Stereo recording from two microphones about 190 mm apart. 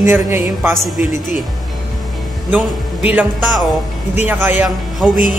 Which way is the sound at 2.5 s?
10° right (ahead or behind).